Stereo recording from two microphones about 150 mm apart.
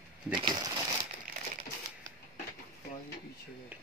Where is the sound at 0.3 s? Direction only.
30° right (ahead or behind).